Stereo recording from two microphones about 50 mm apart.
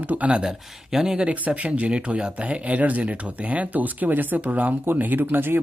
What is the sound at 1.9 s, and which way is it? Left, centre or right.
Speech, centre.